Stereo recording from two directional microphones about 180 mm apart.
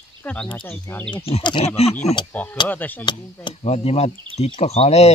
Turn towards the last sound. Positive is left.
turn(degrees=35)  # may be behind; listen again after turning